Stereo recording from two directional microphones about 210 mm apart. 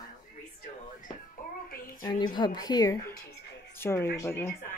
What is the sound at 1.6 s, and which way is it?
Speech, 45° left (ahead or behind).